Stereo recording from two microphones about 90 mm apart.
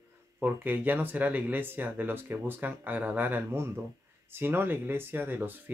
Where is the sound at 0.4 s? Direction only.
20° right (ahead or behind).